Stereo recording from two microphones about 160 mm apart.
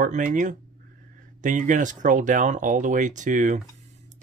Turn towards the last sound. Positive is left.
turn(degrees=-50)  # may be behind; listen again after turning